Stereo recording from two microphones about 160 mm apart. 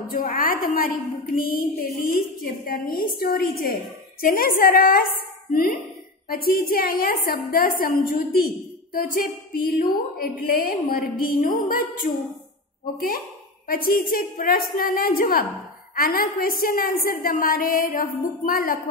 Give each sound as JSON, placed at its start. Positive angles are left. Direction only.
{"t": 0.1, "sound": "a woman's voice", "side_deg": 60}
{"t": 13.7, "sound": "a woman's voice", "side_deg": 65}